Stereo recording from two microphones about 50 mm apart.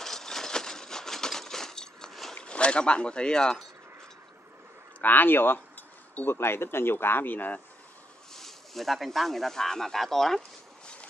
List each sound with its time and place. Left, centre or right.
0.0 s a sound: centre
2.3 s speech: left
5.0 s speech: left
8.3 s speech: centre